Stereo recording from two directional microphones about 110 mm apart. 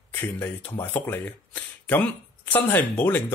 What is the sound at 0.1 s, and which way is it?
Speech, 20° left (ahead or behind).